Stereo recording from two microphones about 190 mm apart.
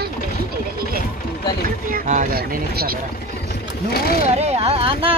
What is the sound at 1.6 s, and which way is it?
Speech, 45° right (ahead or behind).